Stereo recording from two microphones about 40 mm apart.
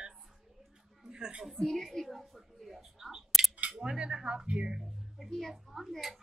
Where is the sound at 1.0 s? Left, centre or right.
Centre.